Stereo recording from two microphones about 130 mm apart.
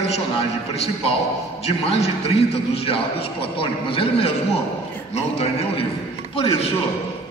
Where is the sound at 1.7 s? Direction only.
50° left (ahead or behind).